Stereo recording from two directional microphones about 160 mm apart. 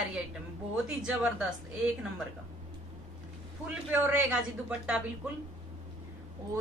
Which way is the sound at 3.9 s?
10° right (ahead or behind).